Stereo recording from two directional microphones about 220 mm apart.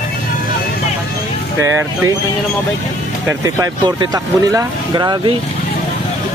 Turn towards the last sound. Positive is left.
turn(degrees=-20)  # may be behind; listen again after turning